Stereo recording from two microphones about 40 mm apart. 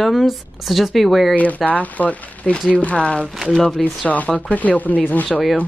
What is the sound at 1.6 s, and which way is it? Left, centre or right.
Speech, left.